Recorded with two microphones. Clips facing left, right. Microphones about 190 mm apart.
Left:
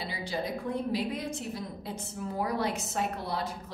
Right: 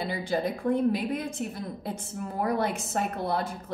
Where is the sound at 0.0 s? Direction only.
50° right (ahead or behind).